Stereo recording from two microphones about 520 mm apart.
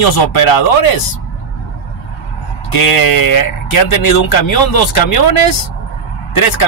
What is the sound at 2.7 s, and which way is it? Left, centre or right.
Speech, left.